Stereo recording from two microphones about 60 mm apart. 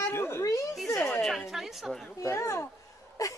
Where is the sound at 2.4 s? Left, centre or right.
Left.